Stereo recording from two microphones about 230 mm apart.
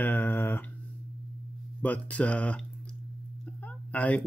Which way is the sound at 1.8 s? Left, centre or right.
Centre.